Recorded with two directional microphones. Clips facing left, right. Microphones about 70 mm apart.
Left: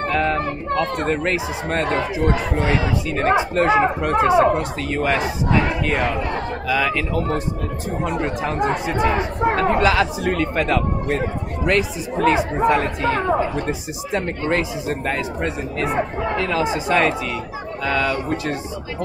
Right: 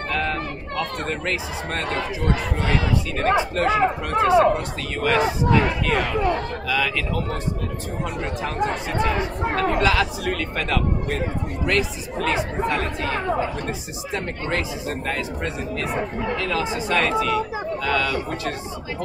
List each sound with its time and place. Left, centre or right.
0.1 s speech: left
3.2 s speech: left
6.7 s speech: left